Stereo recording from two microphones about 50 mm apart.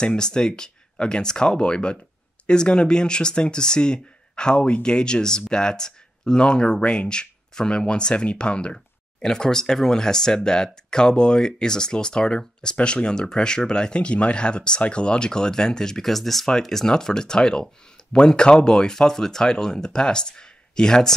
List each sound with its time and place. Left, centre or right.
0.0 s speech: centre